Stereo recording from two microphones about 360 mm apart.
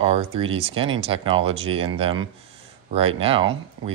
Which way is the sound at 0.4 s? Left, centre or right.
Centre.